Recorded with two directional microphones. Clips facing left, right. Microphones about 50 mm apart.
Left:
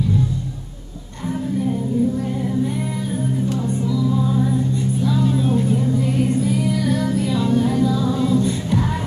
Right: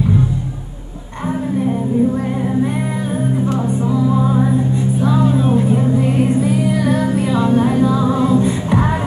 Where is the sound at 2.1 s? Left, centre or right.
Right.